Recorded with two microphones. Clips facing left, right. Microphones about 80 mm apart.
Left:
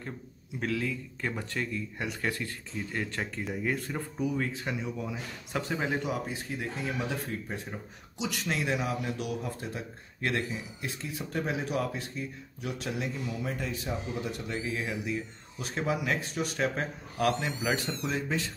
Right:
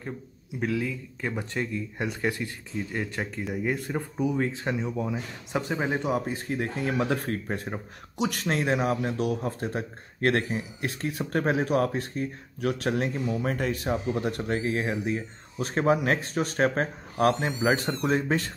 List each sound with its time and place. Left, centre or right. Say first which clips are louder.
0.6 s speech: right 3 dB; centre
4.4 s speech: right 5 dB; right
5.1 s speech: right 4 dB; right
6.1 s speech: right 6 dB; right